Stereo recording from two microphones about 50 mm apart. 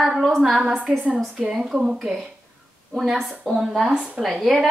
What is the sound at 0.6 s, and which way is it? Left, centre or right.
A woman's voice, right.